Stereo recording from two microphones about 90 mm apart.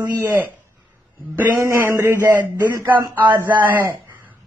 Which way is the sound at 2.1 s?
20° right (ahead or behind).